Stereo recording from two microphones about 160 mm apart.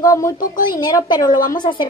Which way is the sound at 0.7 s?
20° left (ahead or behind).